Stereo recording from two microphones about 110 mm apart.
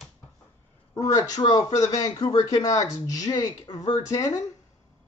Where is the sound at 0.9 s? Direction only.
30° left (ahead or behind).